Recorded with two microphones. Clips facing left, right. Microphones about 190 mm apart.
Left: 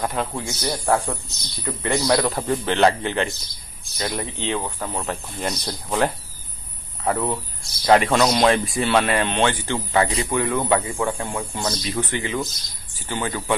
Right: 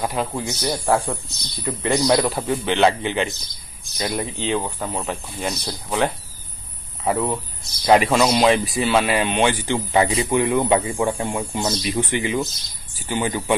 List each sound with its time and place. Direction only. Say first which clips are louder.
0.0 s speech: right 1 dB; 10° right (ahead or behind)
2.2 s a man's voice: right 1 dB; 5° right (ahead or behind)